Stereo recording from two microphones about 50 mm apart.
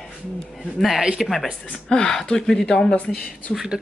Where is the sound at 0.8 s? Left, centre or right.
Centre.